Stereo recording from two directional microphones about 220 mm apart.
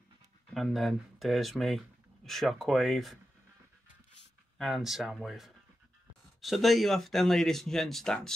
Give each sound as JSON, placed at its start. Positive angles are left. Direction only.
{"t": 0.6, "sound": "speech", "side_deg": 0}
{"t": 4.6, "sound": "speech", "side_deg": 0}